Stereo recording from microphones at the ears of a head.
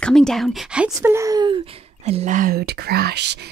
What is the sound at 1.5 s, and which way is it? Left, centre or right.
Speech, right.